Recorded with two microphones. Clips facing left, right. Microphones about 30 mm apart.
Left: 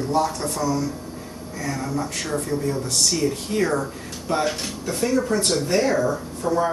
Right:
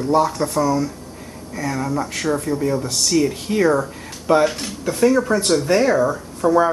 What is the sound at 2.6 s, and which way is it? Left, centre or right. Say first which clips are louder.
Speech: right 5 dB; centre.